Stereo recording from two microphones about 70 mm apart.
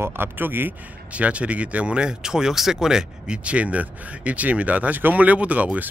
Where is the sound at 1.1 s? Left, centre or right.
Centre.